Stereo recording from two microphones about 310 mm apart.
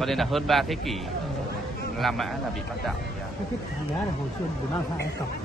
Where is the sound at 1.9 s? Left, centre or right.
Centre.